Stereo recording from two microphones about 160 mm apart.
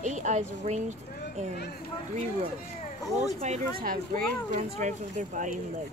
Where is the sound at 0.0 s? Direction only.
50° right (ahead or behind).